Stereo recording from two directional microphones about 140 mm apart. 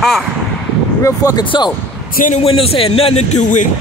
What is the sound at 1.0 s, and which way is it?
Speech, 25° left (ahead or behind).